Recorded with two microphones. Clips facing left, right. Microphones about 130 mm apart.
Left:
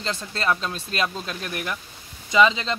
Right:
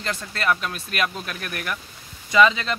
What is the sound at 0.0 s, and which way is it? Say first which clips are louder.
Speech: even; 25° left (ahead or behind).